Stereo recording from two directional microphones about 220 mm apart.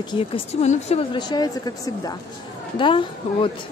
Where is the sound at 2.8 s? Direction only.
25° left (ahead or behind).